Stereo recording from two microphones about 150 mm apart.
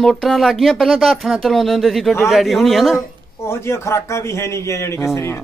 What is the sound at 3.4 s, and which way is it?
A man's voice, 20° left (ahead or behind).